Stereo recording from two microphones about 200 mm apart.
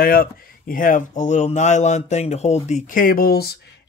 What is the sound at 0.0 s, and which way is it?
Speech, 45° left (ahead or behind).